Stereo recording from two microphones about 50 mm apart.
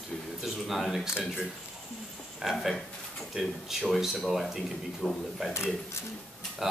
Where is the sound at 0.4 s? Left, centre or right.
Centre.